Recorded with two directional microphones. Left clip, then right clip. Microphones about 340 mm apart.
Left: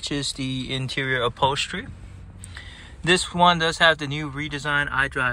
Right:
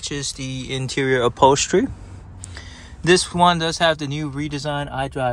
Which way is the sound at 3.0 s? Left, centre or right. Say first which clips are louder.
Right 3 dB; centre.